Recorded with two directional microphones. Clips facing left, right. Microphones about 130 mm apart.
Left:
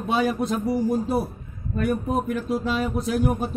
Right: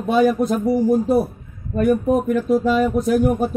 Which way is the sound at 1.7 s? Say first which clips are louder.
Right 7 dB; 45° right (ahead or behind).